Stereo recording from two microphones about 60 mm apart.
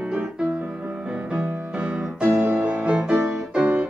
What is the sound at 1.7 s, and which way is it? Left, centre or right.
Music, centre.